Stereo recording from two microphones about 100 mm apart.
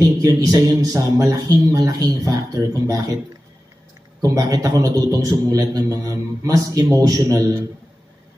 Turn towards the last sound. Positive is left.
turn(degrees=-35)  # may be behind; listen again after turning